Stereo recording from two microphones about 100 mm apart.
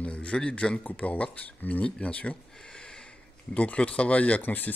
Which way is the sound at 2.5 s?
10° left (ahead or behind).